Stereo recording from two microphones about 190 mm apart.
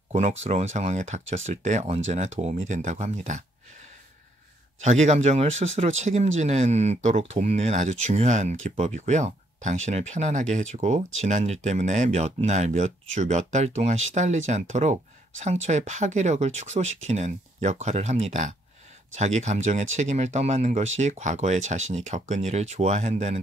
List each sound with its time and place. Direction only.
0.1 s speech: 35° right (ahead or behind)
4.8 s speech: 40° right (ahead or behind)